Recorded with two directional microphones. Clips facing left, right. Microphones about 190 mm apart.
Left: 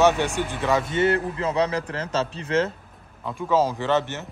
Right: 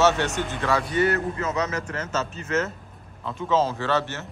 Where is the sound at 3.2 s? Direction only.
10° left (ahead or behind).